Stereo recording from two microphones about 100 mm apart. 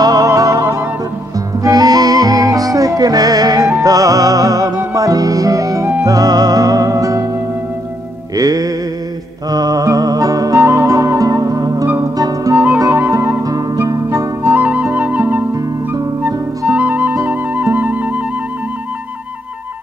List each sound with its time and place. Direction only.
0.0 s music: 40° right (ahead or behind)
8.4 s music: 35° right (ahead or behind)
10.6 s flute: 30° right (ahead or behind)
12.0 s music: 35° right (ahead or behind)
13.1 s music: 25° right (ahead or behind)
14.5 s flute: 15° right (ahead or behind)